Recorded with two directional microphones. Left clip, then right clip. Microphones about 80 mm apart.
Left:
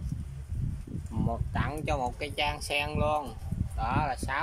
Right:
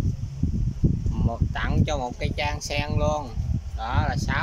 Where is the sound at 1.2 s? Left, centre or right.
Centre.